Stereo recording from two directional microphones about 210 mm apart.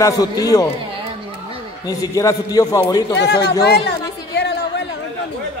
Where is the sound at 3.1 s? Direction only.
50° left (ahead or behind).